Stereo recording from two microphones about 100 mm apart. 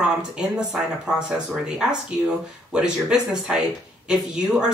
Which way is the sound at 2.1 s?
10° right (ahead or behind).